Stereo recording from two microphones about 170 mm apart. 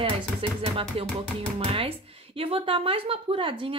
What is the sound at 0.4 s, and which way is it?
A woman's voice, 35° right (ahead or behind).